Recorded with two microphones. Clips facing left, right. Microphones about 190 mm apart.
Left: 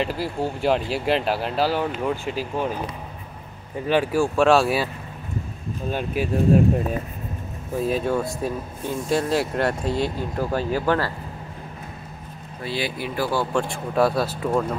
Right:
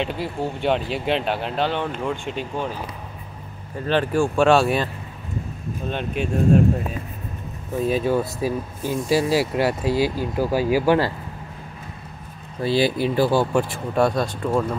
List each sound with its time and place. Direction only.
0.0 s speech: centre (ahead or behind)
3.8 s speech: 10° left (ahead or behind)
5.9 s speech: 5° left (ahead or behind)
7.8 s speech: centre (ahead or behind)
12.6 s speech: 30° right (ahead or behind)
13.5 s speech: 5° right (ahead or behind)